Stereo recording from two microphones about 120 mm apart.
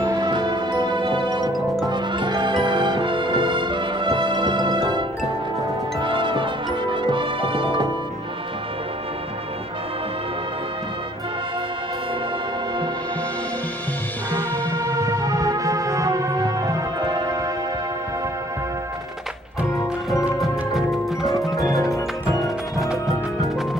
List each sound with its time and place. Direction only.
0.0 s music: 35° right (ahead or behind)
14.8 s music: 30° right (ahead or behind)
20.3 s music: centre (ahead or behind)
21.5 s music: 30° left (ahead or behind)
22.4 s music: centre (ahead or behind)